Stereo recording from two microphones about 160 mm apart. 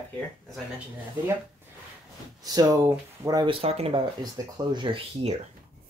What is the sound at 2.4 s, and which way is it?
Speech, 25° right (ahead or behind).